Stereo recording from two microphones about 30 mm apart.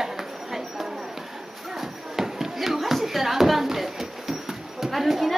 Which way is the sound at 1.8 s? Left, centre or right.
Centre.